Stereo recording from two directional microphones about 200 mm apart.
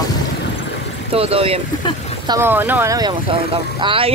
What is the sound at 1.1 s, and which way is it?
Speech, 30° right (ahead or behind).